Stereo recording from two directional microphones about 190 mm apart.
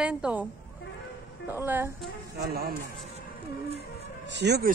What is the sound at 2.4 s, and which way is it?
Speech, 55° right (ahead or behind).